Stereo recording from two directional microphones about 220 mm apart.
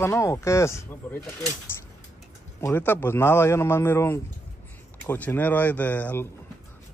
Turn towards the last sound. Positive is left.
turn(degrees=10)  # may be behind; listen again after turning